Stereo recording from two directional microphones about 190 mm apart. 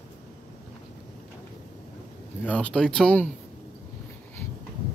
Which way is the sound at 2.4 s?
5° left (ahead or behind).